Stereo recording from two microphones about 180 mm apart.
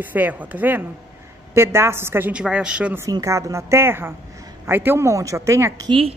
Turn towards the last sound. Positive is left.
turn(degrees=-30)  # may be behind; listen again after turning